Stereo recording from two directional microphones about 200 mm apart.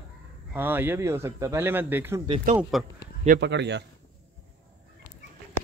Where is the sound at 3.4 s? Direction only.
60° right (ahead or behind).